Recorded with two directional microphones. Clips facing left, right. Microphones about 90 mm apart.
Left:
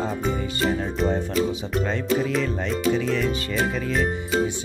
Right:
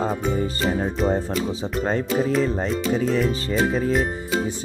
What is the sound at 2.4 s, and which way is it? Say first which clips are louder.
Speech: right 1 dB; 35° right (ahead or behind).